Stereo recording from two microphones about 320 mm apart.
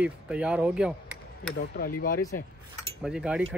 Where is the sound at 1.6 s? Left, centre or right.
Left.